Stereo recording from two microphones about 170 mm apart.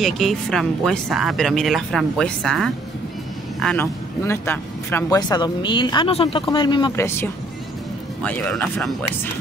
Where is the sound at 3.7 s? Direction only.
15° left (ahead or behind).